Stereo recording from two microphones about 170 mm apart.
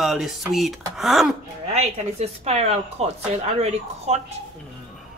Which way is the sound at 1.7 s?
40° right (ahead or behind).